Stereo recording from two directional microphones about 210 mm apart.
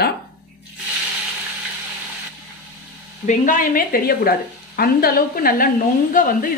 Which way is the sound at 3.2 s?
40° left (ahead or behind).